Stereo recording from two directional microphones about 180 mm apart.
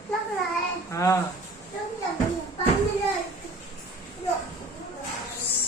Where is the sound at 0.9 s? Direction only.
15° left (ahead or behind).